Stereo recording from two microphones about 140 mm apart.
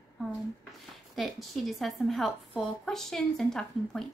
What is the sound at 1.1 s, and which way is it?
A woman's voice, centre (ahead or behind).